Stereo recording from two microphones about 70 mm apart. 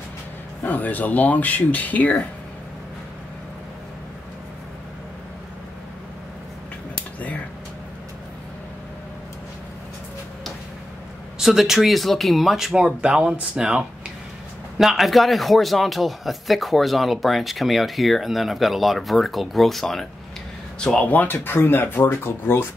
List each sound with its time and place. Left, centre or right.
0.7 s speech: left
11.3 s a man's voice: centre
14.8 s a man's voice: centre
21.1 s speech: left